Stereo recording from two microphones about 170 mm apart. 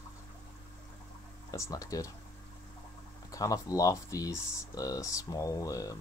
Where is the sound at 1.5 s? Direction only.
20° left (ahead or behind).